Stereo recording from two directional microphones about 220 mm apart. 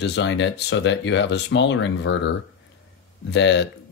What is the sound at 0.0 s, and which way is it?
Speech, 55° left (ahead or behind).